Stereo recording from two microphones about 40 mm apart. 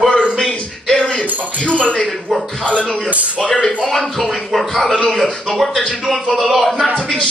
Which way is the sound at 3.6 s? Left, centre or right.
Centre.